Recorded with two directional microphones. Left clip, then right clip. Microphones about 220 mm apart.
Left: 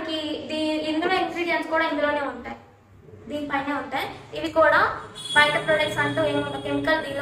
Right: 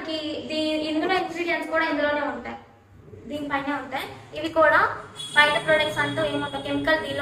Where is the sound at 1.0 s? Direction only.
Centre (ahead or behind).